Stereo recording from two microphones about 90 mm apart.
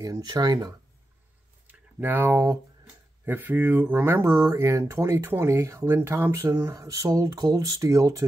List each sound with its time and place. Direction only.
0.0 s speech: 45° right (ahead or behind)
1.7 s speech: 20° right (ahead or behind)
6.7 s speech: 40° right (ahead or behind)